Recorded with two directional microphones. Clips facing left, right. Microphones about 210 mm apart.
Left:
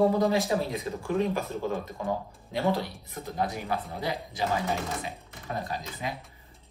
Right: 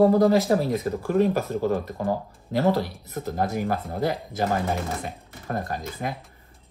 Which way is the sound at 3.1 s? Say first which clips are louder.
Right 5 dB; 45° right (ahead or behind).